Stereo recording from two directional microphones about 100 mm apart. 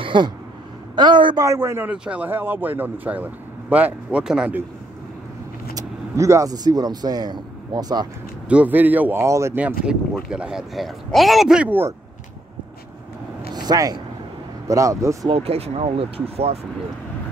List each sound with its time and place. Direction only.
0.0 s a sound: 55° right (ahead or behind)
0.9 s speech: 50° right (ahead or behind)
1.4 s a man's voice: 30° right (ahead or behind)
1.9 s speech: 15° right (ahead or behind)
5.8 s speech: 30° right (ahead or behind)
8.5 s speech: 15° right (ahead or behind)
9.2 s a man's voice: 30° right (ahead or behind)
9.6 s speech: 15° right (ahead or behind)
13.5 s a sound: 45° right (ahead or behind)
14.7 s speech: 35° right (ahead or behind)
15.2 s speech: 85° right